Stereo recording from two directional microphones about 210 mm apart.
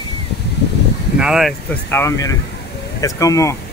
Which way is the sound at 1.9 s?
10° left (ahead or behind).